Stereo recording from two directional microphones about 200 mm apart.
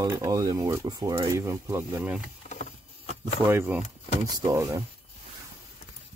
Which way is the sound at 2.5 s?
35° left (ahead or behind).